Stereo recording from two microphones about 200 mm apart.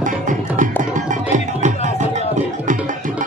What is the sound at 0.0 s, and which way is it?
Music, 40° right (ahead or behind).